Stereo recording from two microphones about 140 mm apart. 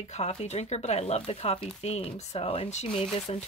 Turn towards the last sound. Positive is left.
turn(degrees=45)  # may be behind; listen again after turning